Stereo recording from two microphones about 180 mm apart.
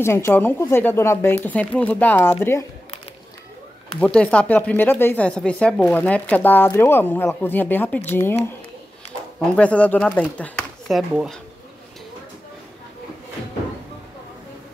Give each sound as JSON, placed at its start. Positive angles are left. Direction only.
{"t": 0.0, "sound": "speech", "side_deg": 15}
{"t": 4.0, "sound": "speech", "side_deg": 5}
{"t": 9.6, "sound": "speech", "side_deg": 5}